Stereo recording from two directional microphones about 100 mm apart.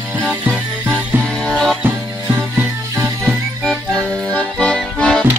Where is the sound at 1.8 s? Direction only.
20° right (ahead or behind).